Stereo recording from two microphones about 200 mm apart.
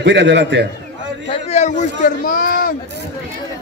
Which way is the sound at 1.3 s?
35° left (ahead or behind).